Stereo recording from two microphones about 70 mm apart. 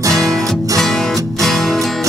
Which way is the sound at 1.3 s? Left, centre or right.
Centre.